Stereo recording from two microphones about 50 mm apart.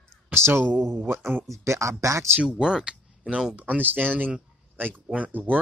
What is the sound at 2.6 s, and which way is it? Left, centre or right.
Speech, centre.